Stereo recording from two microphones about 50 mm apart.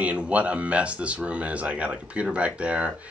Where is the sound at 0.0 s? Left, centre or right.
Right.